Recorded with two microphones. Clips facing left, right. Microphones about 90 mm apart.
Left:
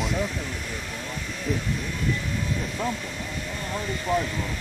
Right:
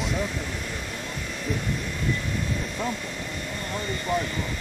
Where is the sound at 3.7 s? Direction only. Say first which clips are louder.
Left 1 dB; 5° left (ahead or behind).